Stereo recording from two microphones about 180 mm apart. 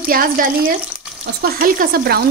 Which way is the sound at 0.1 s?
50° right (ahead or behind).